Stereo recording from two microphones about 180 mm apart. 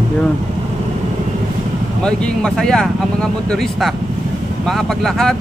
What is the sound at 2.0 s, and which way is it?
Speech, 5° left (ahead or behind).